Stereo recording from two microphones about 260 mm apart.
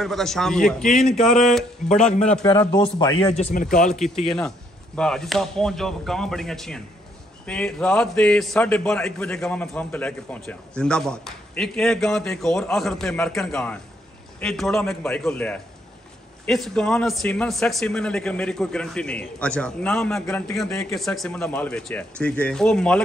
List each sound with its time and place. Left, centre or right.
0.0 s a man's voice: centre
2.4 s speech: centre
3.9 s a man's voice: centre